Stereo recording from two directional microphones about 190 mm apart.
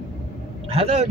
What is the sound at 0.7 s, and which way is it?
Speech, 35° right (ahead or behind).